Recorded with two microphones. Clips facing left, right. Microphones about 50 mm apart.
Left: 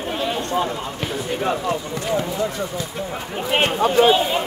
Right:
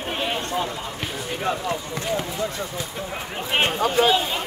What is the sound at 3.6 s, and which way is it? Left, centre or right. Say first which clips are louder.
Speech: left 3 dB; left.